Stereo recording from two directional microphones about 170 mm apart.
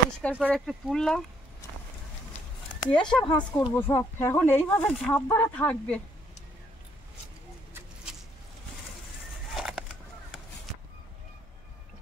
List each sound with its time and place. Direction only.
0.2 s speech: 10° left (ahead or behind)
2.8 s speech: 25° left (ahead or behind)
3.1 s speech: 5° left (ahead or behind)
3.3 s speech: 25° left (ahead or behind)
3.7 s speech: 15° left (ahead or behind)
7.7 s a sound: 5° right (ahead or behind)
9.5 s a sound: centre (ahead or behind)